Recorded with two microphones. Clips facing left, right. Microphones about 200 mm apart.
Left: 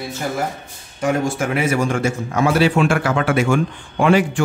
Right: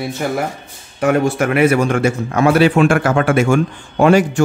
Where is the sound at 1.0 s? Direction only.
65° right (ahead or behind).